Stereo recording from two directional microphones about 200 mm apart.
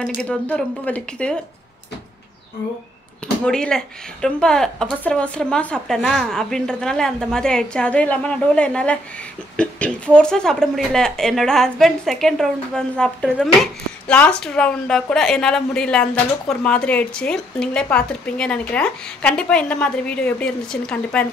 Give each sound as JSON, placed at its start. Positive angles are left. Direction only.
{"t": 0.0, "sound": "a woman's voice", "side_deg": 5}
{"t": 3.4, "sound": "a woman's voice", "side_deg": 5}